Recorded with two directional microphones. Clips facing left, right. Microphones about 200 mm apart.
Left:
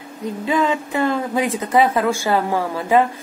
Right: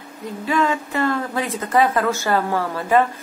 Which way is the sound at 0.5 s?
20° left (ahead or behind).